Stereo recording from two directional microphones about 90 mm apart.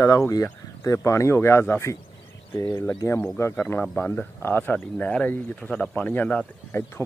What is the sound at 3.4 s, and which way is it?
Speech, 30° left (ahead or behind).